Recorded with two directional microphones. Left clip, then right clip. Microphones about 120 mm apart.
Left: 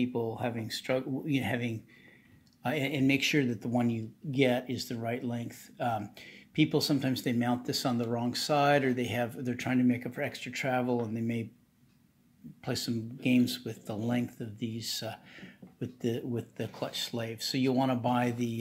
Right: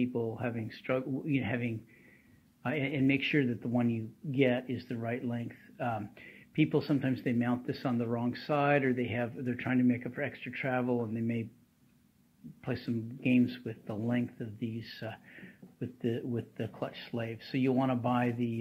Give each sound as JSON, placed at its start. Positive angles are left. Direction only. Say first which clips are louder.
{"t": 0.0, "sound": "speech", "louder": "left 2 dB", "side_deg": 30}
{"t": 12.6, "sound": "speech", "louder": "left 2 dB", "side_deg": 30}
{"t": 16.3, "sound": "speech", "louder": "left 1 dB", "side_deg": 20}